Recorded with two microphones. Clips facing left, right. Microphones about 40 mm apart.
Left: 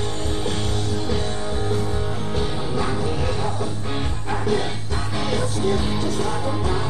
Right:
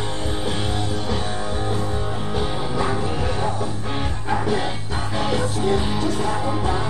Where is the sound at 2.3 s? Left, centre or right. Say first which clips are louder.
Right 1 dB; centre.